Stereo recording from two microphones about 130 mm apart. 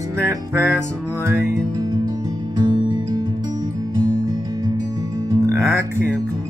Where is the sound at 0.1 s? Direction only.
20° right (ahead or behind).